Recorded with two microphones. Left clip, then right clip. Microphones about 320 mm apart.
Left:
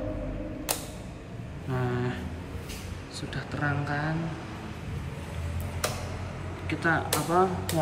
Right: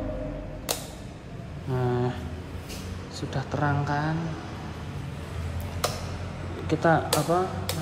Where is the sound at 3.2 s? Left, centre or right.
Centre.